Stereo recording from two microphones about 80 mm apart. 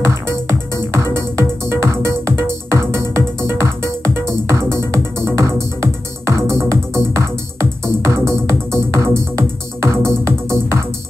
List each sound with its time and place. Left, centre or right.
0.0 s music: right